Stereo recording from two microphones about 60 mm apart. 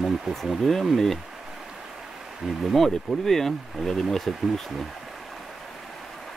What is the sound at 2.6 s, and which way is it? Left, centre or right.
Speech, centre.